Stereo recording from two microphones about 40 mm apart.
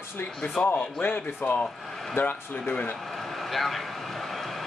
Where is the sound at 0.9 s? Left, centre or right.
Left.